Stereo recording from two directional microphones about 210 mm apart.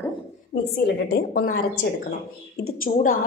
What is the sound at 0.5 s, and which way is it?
Speech, 50° left (ahead or behind).